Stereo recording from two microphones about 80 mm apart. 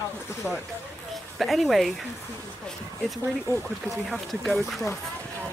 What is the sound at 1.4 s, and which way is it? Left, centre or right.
Speech, centre.